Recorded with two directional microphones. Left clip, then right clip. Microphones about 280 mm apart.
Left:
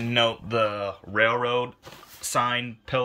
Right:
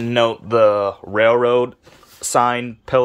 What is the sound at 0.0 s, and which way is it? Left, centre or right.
Speech, centre.